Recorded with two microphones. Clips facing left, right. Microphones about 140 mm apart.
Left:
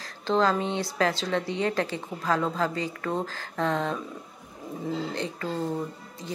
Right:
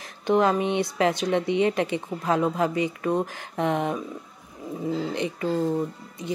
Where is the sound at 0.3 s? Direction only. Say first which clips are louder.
Right 3 dB; 20° right (ahead or behind).